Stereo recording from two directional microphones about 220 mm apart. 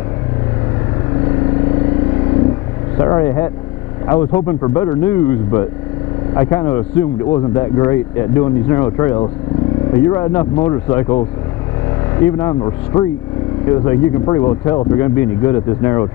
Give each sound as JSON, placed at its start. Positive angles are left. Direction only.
{"t": 3.0, "sound": "vehicle", "side_deg": 15}
{"t": 4.1, "sound": "speech", "side_deg": 20}
{"t": 12.3, "sound": "speech", "side_deg": 15}